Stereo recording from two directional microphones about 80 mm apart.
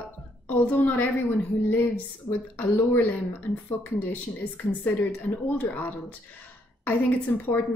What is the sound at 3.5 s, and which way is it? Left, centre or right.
Speech, centre.